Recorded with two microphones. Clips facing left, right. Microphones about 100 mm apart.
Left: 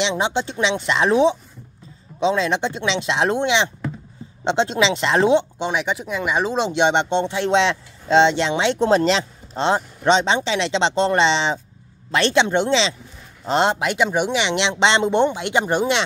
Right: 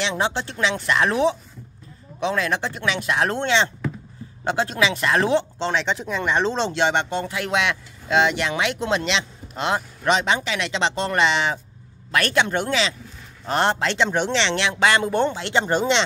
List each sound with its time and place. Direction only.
0.0 s speech: 20° left (ahead or behind)